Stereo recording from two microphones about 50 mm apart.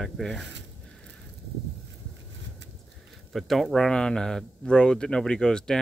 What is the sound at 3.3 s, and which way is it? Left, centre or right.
Speech, centre.